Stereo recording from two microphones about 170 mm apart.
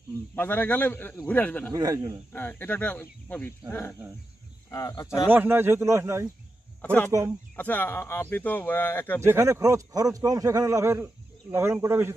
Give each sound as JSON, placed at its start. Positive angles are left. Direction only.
{"t": 0.4, "sound": "speech", "side_deg": 10}
{"t": 1.7, "sound": "a man's voice", "side_deg": -20}
{"t": 2.3, "sound": "speech", "side_deg": 10}
{"t": 4.6, "sound": "speech", "side_deg": 20}
{"t": 5.3, "sound": "a man's voice", "side_deg": -10}
{"t": 6.8, "sound": "speech", "side_deg": 10}
{"t": 9.2, "sound": "a man's voice", "side_deg": -15}